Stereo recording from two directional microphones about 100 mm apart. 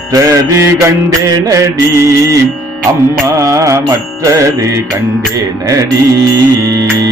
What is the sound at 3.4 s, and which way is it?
Music, 30° right (ahead or behind).